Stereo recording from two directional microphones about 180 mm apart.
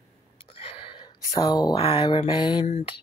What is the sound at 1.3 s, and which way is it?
Speech, 25° left (ahead or behind).